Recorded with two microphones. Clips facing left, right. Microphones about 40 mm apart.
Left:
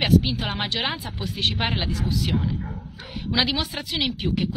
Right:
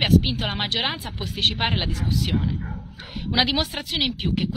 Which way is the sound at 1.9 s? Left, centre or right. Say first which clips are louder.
Even; right.